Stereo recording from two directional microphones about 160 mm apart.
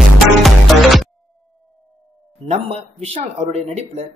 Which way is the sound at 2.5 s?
40° right (ahead or behind).